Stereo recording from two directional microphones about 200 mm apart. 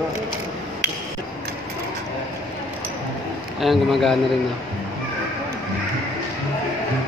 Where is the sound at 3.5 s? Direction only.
Centre (ahead or behind).